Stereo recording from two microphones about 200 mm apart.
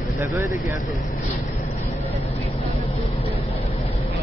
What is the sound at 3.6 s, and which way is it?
Vehicle, 30° left (ahead or behind).